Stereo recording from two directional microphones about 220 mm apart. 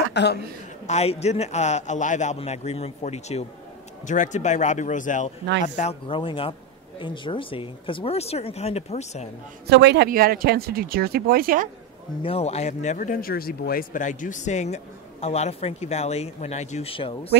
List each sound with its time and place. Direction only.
0.1 s a woman's voice: 50° left (ahead or behind)
0.8 s speech: 30° left (ahead or behind)
9.7 s speech: 50° right (ahead or behind)
12.2 s speech: 25° left (ahead or behind)